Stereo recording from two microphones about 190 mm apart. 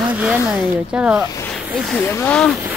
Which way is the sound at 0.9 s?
10° right (ahead or behind).